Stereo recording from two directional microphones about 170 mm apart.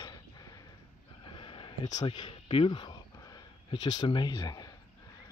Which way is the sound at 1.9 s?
25° left (ahead or behind).